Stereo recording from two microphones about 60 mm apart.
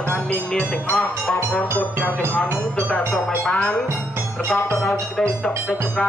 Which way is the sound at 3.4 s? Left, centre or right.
Centre.